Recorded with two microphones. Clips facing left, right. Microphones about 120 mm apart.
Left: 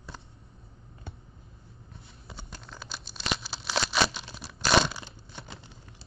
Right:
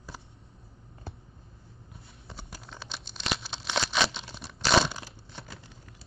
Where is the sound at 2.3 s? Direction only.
Centre (ahead or behind).